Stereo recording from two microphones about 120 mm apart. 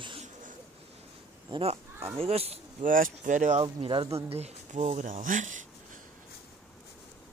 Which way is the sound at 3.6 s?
45° right (ahead or behind).